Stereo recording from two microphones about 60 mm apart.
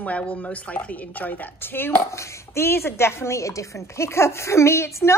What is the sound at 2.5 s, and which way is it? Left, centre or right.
A woman's voice, left.